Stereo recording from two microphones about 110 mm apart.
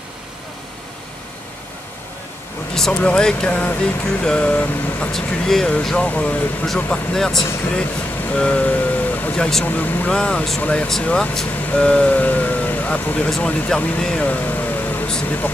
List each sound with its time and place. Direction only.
2.7 s speech: 10° left (ahead or behind)